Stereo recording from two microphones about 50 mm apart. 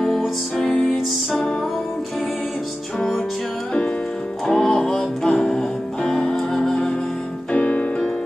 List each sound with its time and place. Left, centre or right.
0.6 s music: centre
4.6 s music: centre
7.5 s piano: left